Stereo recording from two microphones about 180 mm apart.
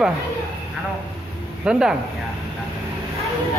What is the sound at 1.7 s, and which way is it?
Speech, 5° right (ahead or behind).